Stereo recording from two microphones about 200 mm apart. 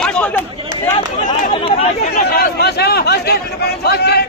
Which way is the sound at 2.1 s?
50° left (ahead or behind).